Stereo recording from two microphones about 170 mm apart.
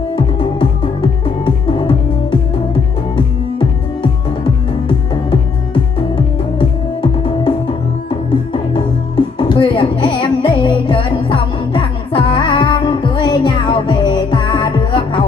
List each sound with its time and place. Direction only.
0.1 s music: 30° left (ahead or behind)
3.2 s music: 30° left (ahead or behind)